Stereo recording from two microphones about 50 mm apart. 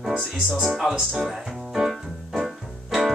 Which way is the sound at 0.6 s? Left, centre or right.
Centre.